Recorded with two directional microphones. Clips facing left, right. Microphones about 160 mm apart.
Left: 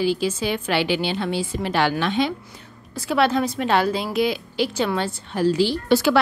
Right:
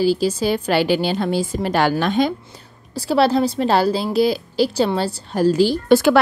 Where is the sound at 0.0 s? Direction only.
35° right (ahead or behind).